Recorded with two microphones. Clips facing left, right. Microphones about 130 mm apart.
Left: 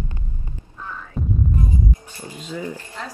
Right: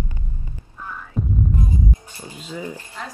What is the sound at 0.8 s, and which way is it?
Throbbing, 10° right (ahead or behind).